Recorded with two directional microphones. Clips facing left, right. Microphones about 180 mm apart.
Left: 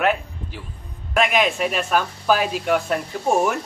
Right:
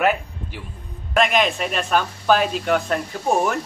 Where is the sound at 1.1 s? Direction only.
5° left (ahead or behind).